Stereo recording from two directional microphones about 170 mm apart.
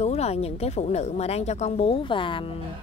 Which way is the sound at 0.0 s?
40° left (ahead or behind).